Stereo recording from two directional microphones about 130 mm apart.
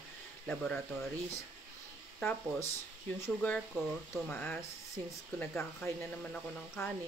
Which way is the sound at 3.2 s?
10° left (ahead or behind).